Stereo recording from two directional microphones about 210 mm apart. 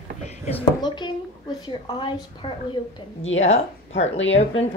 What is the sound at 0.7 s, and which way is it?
A woman's voice, 20° left (ahead or behind).